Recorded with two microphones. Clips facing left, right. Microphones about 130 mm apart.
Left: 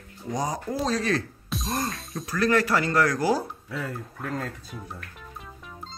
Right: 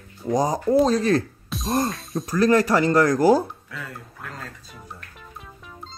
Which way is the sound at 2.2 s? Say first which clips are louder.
Right 5 dB; 40° right (ahead or behind).